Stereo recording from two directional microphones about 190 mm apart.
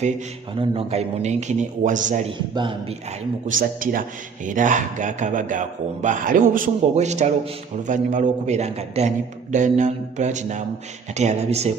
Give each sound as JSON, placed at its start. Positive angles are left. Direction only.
{"t": 0.6, "sound": "a man's voice", "side_deg": -30}
{"t": 2.3, "sound": "a man's voice", "side_deg": -25}
{"t": 3.4, "sound": "a man's voice", "side_deg": -45}